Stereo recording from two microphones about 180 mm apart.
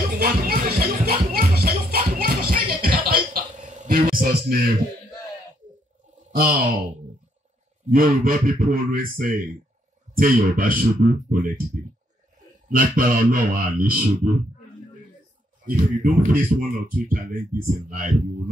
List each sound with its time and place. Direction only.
0.2 s music: 55° right (ahead or behind)
3.1 s a sound: 55° right (ahead or behind)
6.3 s speech: 55° right (ahead or behind)
7.9 s a man's voice: 55° right (ahead or behind)
12.6 s speech: 50° right (ahead or behind)
15.6 s speech: 45° right (ahead or behind)